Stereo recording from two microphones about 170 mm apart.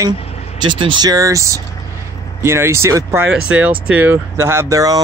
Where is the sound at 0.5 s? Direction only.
30° right (ahead or behind).